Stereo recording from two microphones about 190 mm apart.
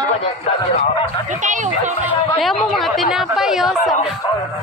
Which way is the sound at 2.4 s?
Centre (ahead or behind).